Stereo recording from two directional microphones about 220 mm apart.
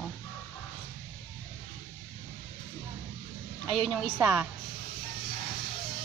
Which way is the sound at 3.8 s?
Centre (ahead or behind).